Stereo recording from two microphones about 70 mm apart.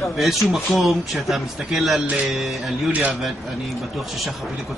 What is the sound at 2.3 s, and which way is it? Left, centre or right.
Speech, centre.